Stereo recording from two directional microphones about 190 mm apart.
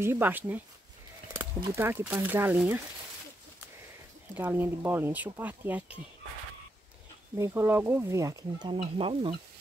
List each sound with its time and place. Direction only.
0.0 s speech: 10° right (ahead or behind)
1.8 s speech: 10° right (ahead or behind)
4.4 s speech: 10° right (ahead or behind)
7.3 s speech: 15° right (ahead or behind)